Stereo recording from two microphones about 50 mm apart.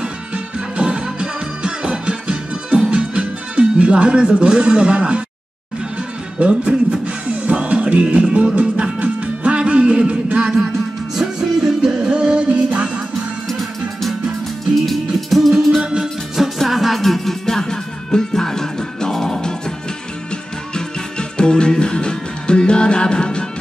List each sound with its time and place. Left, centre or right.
0.0 s music: right
6.4 s speech: right
7.4 s music: right
11.1 s music: centre
13.5 s music: centre
15.8 s music: centre
16.3 s music: centre
20.7 s music: centre